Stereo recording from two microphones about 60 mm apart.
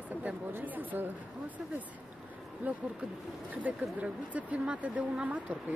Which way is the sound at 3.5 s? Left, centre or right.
Right.